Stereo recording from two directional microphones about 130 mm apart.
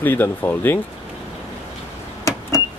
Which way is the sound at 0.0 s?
15° left (ahead or behind).